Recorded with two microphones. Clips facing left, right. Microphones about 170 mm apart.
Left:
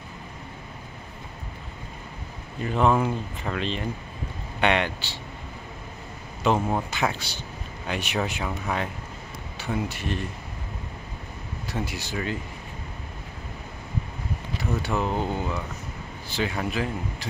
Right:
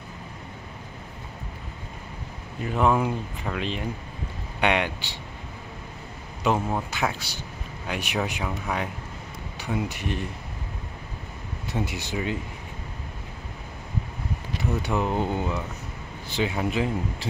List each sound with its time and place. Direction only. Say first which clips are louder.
2.6 s speech: left 1 dB; 5° right (ahead or behind)
6.4 s speech: left 1 dB; 10° right (ahead or behind)
9.6 s speech: even; 15° right (ahead or behind)
11.7 s speech: right 2 dB; 20° right (ahead or behind)
14.8 s speech: right 1 dB; 15° right (ahead or behind)